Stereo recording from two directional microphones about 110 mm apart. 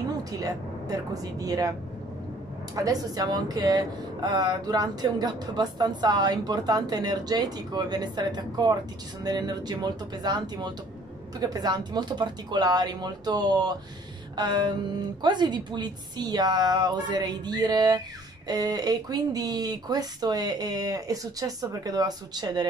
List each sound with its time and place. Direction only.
0.2 s speech: 30° right (ahead or behind)
2.7 s speech: 35° right (ahead or behind)